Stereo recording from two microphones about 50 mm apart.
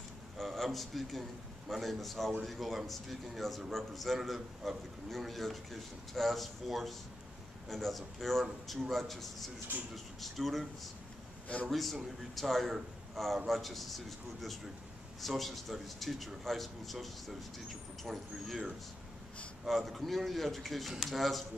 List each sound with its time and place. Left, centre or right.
0.4 s a man's voice: centre
11.7 s a man's voice: centre
19.6 s a man's voice: centre